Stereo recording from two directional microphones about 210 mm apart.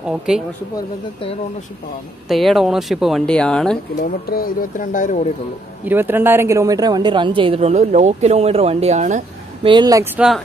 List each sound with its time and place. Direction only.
0.3 s speech: 5° right (ahead or behind)
2.2 s speech: centre (ahead or behind)
4.3 s speech: 45° left (ahead or behind)
5.9 s a woman's voice: 10° right (ahead or behind); by 9.7 s 35° right (ahead or behind)
9.7 s speech: 20° right (ahead or behind)